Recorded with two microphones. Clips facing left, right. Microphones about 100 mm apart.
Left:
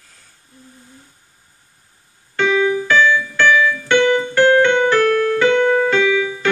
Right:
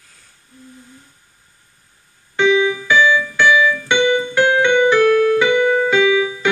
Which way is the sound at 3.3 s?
15° right (ahead or behind).